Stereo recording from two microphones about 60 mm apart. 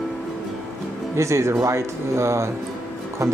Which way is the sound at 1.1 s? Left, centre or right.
Right.